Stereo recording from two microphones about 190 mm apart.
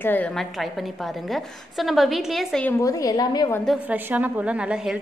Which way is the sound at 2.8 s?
20° left (ahead or behind).